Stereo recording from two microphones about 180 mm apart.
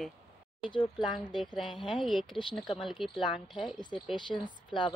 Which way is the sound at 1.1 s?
Centre (ahead or behind).